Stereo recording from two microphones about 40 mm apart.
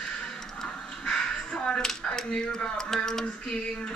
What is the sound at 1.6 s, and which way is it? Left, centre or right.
Speech, centre.